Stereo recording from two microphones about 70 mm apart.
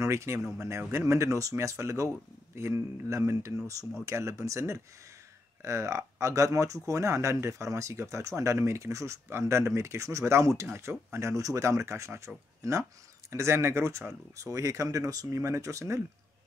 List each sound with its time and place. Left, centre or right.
0.0 s speech: right